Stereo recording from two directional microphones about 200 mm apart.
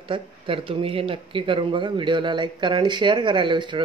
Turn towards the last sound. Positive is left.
turn(degrees=-25)  # may be behind; listen again after turning